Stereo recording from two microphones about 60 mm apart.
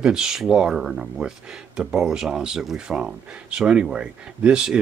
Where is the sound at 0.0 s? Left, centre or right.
Centre.